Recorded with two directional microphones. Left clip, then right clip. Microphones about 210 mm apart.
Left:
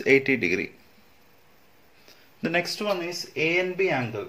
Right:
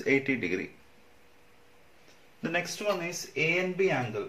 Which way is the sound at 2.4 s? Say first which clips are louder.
Left 5 dB; 35° left (ahead or behind).